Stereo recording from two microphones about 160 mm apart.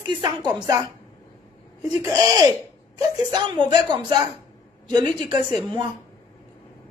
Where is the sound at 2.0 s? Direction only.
20° right (ahead or behind).